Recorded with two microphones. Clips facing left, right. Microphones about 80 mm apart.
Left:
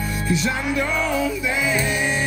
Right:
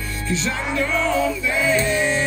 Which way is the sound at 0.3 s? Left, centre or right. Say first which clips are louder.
Left 1 dB; centre.